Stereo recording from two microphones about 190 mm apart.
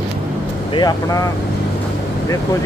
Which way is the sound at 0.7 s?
20° left (ahead or behind).